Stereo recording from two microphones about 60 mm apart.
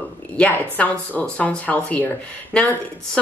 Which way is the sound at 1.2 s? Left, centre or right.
Centre.